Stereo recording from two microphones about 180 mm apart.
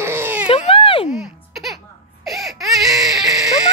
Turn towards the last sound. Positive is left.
turn(degrees=0)  # may be behind; listen again after turning